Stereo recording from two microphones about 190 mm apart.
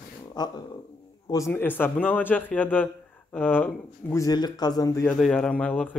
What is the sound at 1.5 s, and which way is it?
Speech, 10° left (ahead or behind).